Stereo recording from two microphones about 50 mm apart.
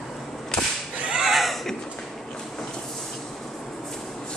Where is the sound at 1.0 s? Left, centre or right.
Centre.